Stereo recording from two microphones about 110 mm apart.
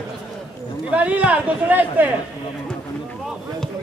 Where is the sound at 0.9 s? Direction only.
10° right (ahead or behind).